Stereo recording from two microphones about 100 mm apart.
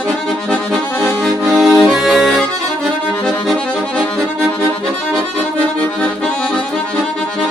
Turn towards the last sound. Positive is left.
turn(degrees=10)  # may be behind; listen again after turning